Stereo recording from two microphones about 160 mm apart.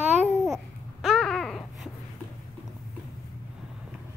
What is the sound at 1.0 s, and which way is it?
Babbling, centre (ahead or behind).